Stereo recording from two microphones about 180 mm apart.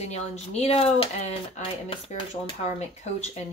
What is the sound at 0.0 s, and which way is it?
Speech, 35° left (ahead or behind).